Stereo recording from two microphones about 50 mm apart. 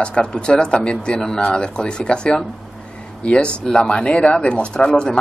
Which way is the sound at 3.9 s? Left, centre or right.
Centre.